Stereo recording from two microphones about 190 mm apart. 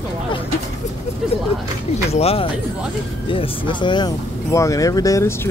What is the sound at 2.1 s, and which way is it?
Speech, 30° left (ahead or behind).